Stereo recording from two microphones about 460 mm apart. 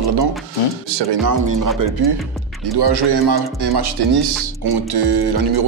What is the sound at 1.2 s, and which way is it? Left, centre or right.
Music, right.